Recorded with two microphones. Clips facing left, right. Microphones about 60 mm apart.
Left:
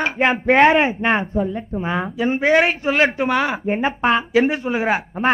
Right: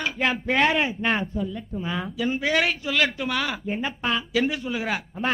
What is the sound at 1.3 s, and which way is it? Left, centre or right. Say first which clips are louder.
A man's voice: left 7 dB; left.